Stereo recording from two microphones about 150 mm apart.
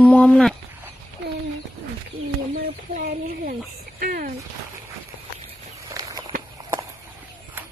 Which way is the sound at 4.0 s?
70° right (ahead or behind).